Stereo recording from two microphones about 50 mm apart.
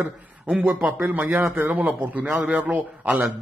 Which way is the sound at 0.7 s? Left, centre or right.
Right.